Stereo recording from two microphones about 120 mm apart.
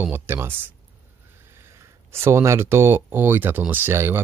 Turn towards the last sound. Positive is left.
turn(degrees=-20)  # may be behind; listen again after turning